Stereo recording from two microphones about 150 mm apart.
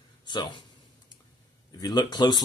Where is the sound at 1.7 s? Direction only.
25° left (ahead or behind).